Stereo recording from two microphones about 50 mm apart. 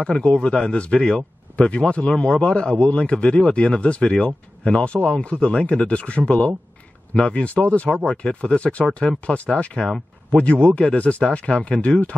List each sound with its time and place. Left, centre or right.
0.0 s a man's voice: centre
11.7 s speech: centre